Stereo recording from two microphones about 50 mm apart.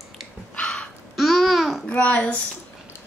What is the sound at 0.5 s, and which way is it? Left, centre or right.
Dog, centre.